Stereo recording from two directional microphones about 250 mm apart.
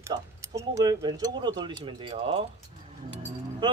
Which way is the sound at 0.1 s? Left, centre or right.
Centre.